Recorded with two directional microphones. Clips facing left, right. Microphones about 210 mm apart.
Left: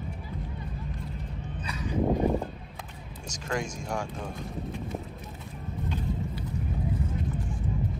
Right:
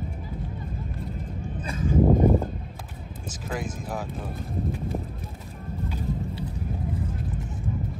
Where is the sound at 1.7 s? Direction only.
50° right (ahead or behind).